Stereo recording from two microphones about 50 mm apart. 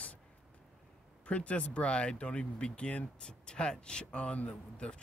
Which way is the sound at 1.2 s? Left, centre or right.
Left.